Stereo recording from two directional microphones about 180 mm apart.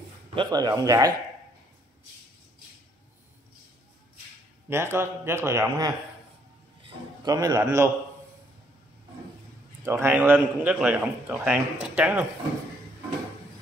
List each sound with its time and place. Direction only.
0.3 s speech: 25° right (ahead or behind)
4.6 s a man's voice: 15° right (ahead or behind)
7.2 s speech: 20° right (ahead or behind)
9.8 s a man's voice: 15° right (ahead or behind)